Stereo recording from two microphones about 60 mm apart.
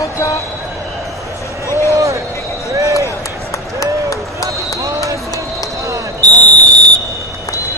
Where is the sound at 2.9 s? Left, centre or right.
Left.